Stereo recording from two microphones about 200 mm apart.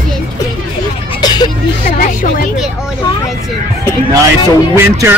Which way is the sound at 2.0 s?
45° left (ahead or behind).